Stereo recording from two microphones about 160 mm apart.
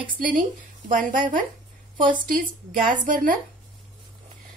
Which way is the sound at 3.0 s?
55° right (ahead or behind).